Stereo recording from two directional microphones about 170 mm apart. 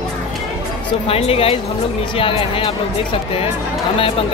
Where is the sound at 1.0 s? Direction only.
35° left (ahead or behind).